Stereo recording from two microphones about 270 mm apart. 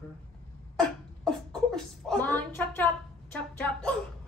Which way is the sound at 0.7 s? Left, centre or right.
Centre.